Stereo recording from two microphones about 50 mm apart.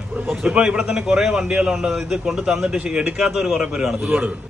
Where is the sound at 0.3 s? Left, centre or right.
Centre.